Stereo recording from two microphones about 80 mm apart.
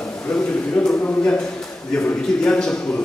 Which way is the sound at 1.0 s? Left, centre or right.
Centre.